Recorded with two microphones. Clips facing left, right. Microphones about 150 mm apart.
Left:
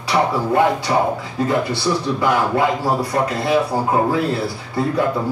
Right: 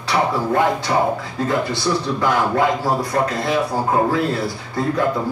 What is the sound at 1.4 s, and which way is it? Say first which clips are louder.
A man's voice: left 2 dB; 10° left (ahead or behind).